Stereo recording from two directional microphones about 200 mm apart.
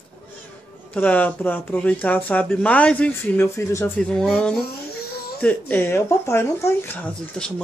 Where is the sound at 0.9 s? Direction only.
10° left (ahead or behind).